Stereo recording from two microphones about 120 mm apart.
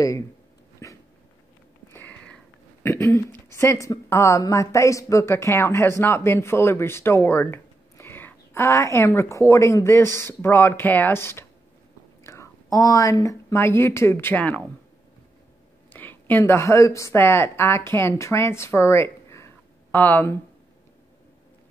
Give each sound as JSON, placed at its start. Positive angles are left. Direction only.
{"t": 0.8, "sound": "dog", "side_deg": 25}
{"t": 1.9, "sound": "a sound", "side_deg": 15}
{"t": 2.9, "sound": "a woman's voice", "side_deg": 25}
{"t": 15.9, "sound": "a woman's voice", "side_deg": 15}